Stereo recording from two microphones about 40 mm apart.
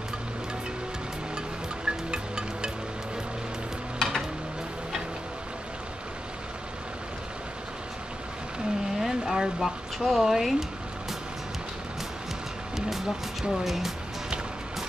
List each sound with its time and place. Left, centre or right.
1.9 s music: right
4.0 s stir: centre
9.0 s vehicle: centre
9.6 s speech: centre
12.7 s speech: centre